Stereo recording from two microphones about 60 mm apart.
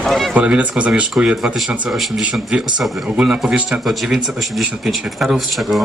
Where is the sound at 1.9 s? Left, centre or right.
Centre.